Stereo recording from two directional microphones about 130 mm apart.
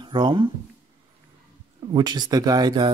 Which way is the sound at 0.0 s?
35° right (ahead or behind).